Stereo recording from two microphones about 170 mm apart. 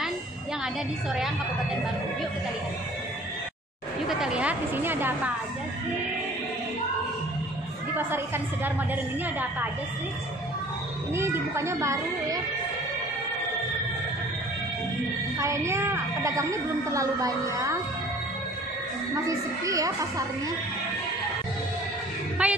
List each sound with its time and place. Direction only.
4.1 s a woman's voice: 5° right (ahead or behind)
11.1 s a woman's voice: 15° right (ahead or behind)
15.3 s a woman's voice: 15° right (ahead or behind)
19.2 s a woman's voice: 20° right (ahead or behind)
22.4 s a woman's voice: 10° right (ahead or behind)